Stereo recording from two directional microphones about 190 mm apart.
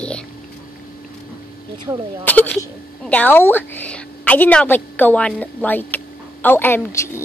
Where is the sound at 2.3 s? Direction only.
10° left (ahead or behind).